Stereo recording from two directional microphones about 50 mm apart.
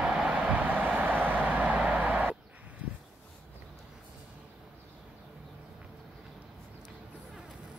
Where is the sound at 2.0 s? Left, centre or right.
Right.